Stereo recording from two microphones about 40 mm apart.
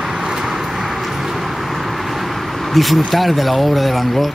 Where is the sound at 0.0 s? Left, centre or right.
Centre.